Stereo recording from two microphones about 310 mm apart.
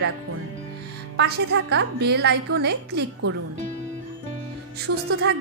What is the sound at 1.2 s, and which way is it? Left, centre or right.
A woman's voice, right.